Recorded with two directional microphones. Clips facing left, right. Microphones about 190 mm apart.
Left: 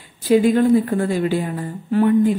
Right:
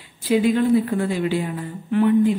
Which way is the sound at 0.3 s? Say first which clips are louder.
Left 3 dB; 45° left (ahead or behind).